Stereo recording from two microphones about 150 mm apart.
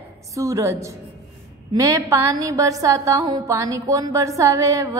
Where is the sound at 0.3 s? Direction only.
20° right (ahead or behind).